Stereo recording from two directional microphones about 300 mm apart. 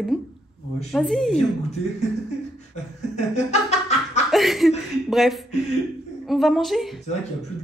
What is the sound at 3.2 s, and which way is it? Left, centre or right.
Chuckle, left.